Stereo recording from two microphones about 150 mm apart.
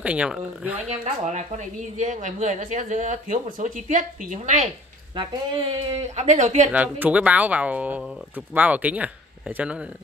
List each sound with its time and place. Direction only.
0.0 s speech: 10° right (ahead or behind)
1.0 s speech: 50° right (ahead or behind)
5.1 s speech: 35° right (ahead or behind); by 6.7 s 55° right (ahead or behind)
6.7 s speech: 10° right (ahead or behind)